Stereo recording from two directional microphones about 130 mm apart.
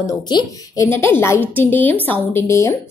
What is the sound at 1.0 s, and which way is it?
Speech, 20° left (ahead or behind).